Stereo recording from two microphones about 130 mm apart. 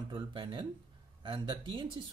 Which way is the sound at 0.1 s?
35° right (ahead or behind).